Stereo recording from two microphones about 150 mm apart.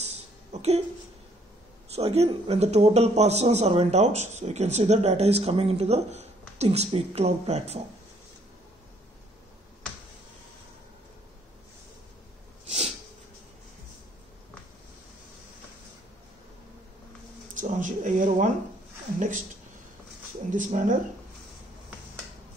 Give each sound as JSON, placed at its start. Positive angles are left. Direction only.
{"t": 0.0, "sound": "a sound", "side_deg": -45}
{"t": 2.0, "sound": "a man's voice", "side_deg": -45}
{"t": 12.6, "sound": "snort", "side_deg": -45}
{"t": 17.6, "sound": "speech", "side_deg": -55}
{"t": 20.5, "sound": "speech", "side_deg": -55}